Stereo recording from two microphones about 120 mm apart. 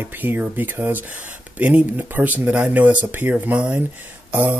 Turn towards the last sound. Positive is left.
turn(degrees=-15)  # may be behind; listen again after turning